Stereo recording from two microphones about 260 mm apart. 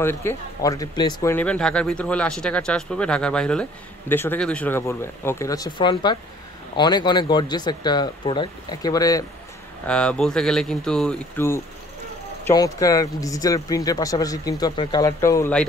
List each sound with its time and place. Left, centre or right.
0.0 s speech: centre